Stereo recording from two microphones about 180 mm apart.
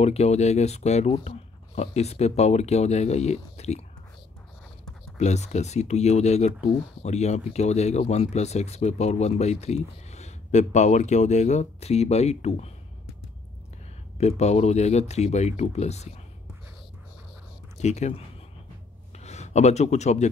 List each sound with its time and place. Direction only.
0.0 s speech: 35° left (ahead or behind)
5.1 s speech: 40° left (ahead or behind)
14.1 s speech: 35° left (ahead or behind)
17.7 s speech: 40° left (ahead or behind)
19.1 s speech: 40° left (ahead or behind)